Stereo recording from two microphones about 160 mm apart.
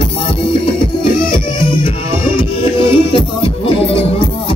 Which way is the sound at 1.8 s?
30° left (ahead or behind).